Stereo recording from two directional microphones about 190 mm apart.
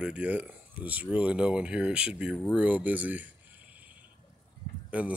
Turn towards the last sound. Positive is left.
turn(degrees=-5)  # may be behind; listen again after turning